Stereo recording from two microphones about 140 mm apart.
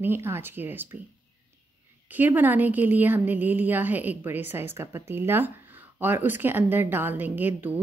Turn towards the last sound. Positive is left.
turn(degrees=-15)  # may be behind; listen again after turning